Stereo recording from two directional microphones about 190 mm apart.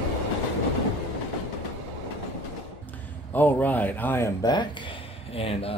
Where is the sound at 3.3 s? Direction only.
10° left (ahead or behind).